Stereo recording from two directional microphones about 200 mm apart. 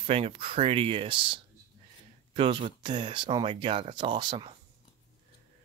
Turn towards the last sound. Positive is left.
turn(degrees=-25)  # may be behind; listen again after turning